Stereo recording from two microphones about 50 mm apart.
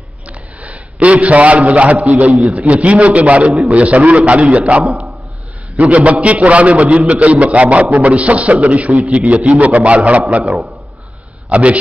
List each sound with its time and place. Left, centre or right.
0.3 s a man's voice: right
5.9 s a man's voice: right
10.4 s a man's voice: centre
11.4 s a man's voice: right